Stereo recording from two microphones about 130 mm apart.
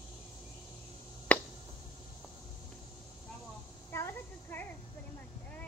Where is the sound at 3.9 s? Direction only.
20° left (ahead or behind).